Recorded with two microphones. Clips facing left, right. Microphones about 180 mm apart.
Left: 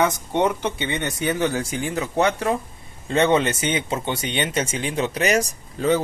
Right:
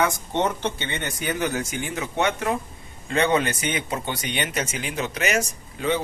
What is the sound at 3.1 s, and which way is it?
A man's voice, 25° left (ahead or behind).